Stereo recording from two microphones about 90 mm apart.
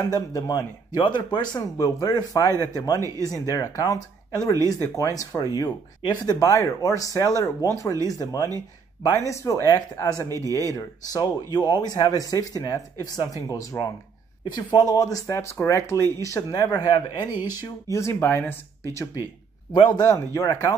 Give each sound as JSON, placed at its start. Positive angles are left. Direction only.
{"t": 0.1, "sound": "speech", "side_deg": 45}
{"t": 1.0, "sound": "speech", "side_deg": 55}
{"t": 10.1, "sound": "speech", "side_deg": -35}
{"t": 10.5, "sound": "speech", "side_deg": 40}
{"t": 14.4, "sound": "speech", "side_deg": 55}
{"t": 17.9, "sound": "speech", "side_deg": 30}
{"t": 20.0, "sound": "speech", "side_deg": 40}